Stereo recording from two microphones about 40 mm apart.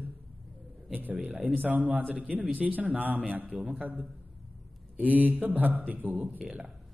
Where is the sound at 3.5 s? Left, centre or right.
Centre.